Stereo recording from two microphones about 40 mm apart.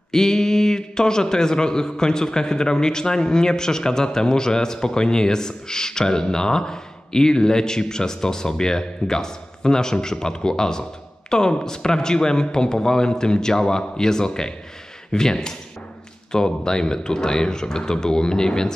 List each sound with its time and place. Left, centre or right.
0.1 s a man's voice: centre